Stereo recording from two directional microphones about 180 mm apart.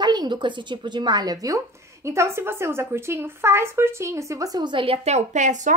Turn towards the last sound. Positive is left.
turn(degrees=-40)  # may be behind; listen again after turning